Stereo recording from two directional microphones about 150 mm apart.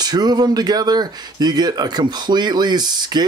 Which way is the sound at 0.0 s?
25° right (ahead or behind).